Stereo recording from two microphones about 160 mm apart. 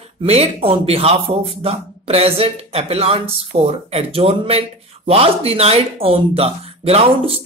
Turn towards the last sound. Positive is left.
turn(degrees=-40)  # may be behind; listen again after turning